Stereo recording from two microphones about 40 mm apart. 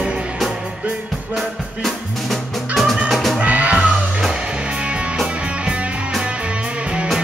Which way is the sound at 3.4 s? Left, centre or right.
Right.